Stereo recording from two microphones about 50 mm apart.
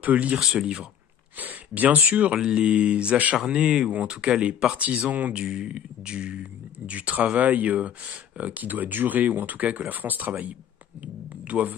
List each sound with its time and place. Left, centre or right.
0.0 s speech: right
0.4 s speech: centre
1.3 s speech: right
2.3 s speech: centre
3.9 s speech: right